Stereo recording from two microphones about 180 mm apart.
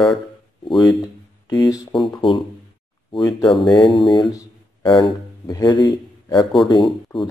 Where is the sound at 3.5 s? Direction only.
Centre (ahead or behind).